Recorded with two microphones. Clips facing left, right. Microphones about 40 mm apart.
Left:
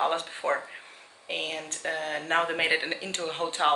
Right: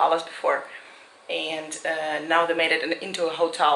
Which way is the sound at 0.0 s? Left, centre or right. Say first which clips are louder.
Right 6 dB; centre.